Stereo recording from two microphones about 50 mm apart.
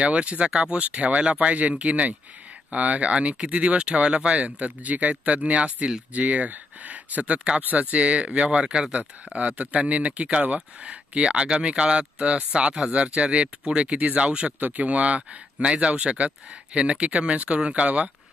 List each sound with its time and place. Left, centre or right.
0.0 s speech: right